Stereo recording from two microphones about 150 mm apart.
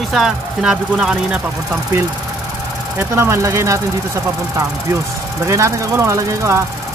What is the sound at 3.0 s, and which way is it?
Speech, 20° right (ahead or behind).